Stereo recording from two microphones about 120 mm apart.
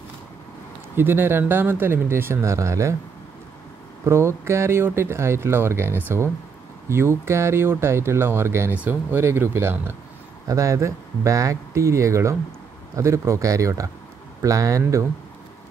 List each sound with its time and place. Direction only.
0.9 s speech: 20° right (ahead or behind)
4.0 s speech: 20° right (ahead or behind)